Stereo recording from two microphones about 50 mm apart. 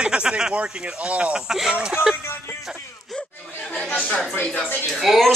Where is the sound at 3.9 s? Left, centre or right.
Left.